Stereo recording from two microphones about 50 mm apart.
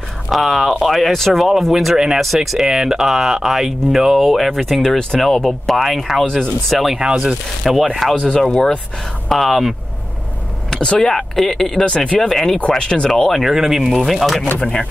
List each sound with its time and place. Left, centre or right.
0.3 s speech: centre
8.5 s speech: centre
9.3 s speech: centre
10.7 s speech: centre
11.8 s speech: left
12.2 s speech: centre
12.5 s speech: centre
13.1 s speech: centre
14.6 s speech: centre